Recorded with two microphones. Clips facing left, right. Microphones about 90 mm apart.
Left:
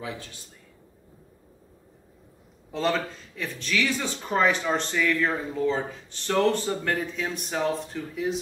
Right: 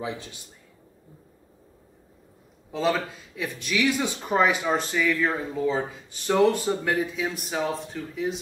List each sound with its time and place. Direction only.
0.0 s a man's voice: 20° right (ahead or behind)
2.7 s speech: centre (ahead or behind)